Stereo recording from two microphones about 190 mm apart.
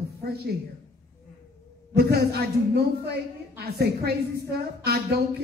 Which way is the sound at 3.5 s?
55° right (ahead or behind).